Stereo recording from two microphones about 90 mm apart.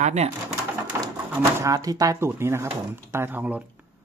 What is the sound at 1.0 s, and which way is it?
Speech, 35° right (ahead or behind).